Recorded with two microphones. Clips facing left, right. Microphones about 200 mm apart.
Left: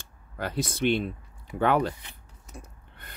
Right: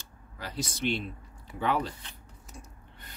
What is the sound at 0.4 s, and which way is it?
Speech, 55° left (ahead or behind).